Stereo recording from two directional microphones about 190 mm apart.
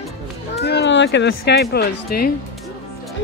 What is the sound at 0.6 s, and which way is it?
Speech, 60° left (ahead or behind).